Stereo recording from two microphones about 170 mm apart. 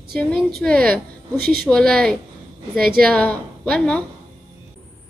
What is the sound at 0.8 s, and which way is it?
Speech, 65° right (ahead or behind).